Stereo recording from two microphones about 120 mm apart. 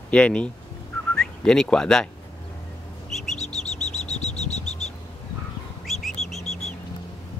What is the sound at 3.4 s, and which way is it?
Bird, 65° left (ahead or behind).